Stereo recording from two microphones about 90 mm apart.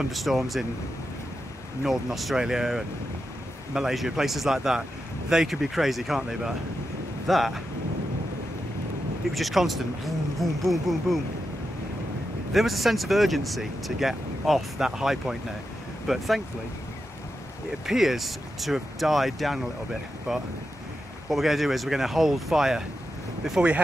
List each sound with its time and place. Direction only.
0.1 s speech: centre (ahead or behind)
1.9 s speech: centre (ahead or behind)
9.3 s speech: centre (ahead or behind)
12.5 s speech: centre (ahead or behind)
17.8 s speech: 5° right (ahead or behind)